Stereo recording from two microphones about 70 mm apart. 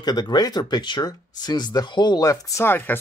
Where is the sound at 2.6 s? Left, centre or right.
Left.